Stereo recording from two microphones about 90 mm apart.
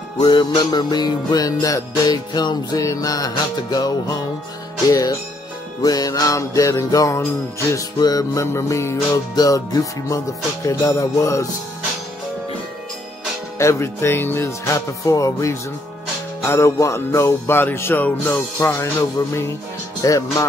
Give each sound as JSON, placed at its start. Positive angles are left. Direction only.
{"t": 0.2, "sound": "music", "side_deg": 55}
{"t": 13.6, "sound": "music", "side_deg": 30}